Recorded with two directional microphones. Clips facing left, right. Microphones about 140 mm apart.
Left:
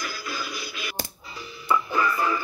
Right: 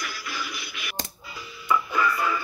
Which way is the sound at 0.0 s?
30° left (ahead or behind).